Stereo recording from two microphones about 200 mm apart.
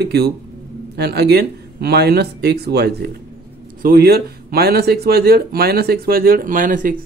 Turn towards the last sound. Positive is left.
turn(degrees=-40)  # may be behind; listen again after turning